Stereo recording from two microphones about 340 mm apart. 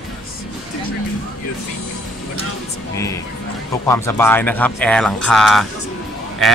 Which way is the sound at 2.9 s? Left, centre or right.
Centre.